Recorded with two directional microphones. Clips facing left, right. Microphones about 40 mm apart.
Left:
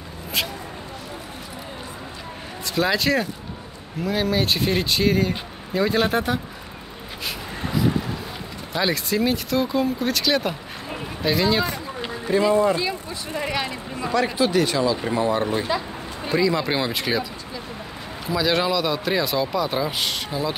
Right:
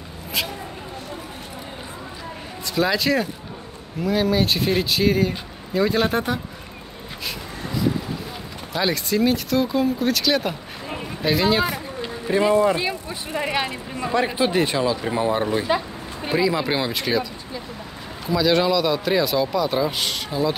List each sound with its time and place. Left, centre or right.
2.6 s speech: centre
8.7 s speech: centre
10.9 s a sound: centre
12.3 s speech: right
15.7 s speech: right
16.3 s speech: centre